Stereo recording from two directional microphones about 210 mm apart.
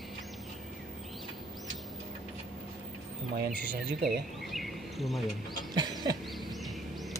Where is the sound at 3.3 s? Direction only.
45° right (ahead or behind).